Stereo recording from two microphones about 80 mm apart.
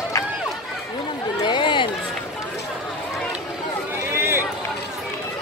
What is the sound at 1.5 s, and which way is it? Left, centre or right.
Chatter, left.